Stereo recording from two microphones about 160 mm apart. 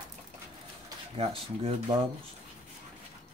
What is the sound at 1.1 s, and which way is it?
Speech, 35° right (ahead or behind).